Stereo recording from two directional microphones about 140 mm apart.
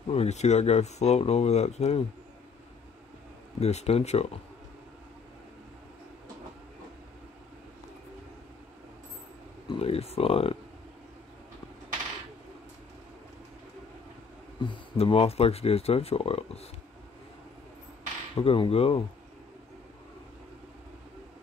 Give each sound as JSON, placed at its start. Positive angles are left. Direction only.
{"t": 0.1, "sound": "speech", "side_deg": 50}
{"t": 3.5, "sound": "speech", "side_deg": 50}
{"t": 9.7, "sound": "speech", "side_deg": 45}
{"t": 14.6, "sound": "speech", "side_deg": 40}
{"t": 18.3, "sound": "speech", "side_deg": 40}